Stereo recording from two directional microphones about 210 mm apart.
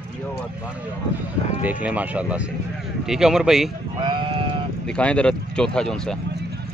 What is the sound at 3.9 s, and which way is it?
Sheep, 25° right (ahead or behind).